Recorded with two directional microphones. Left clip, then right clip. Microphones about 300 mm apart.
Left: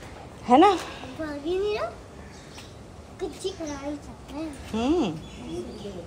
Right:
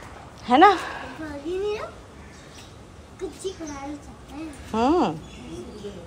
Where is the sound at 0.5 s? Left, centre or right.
Centre.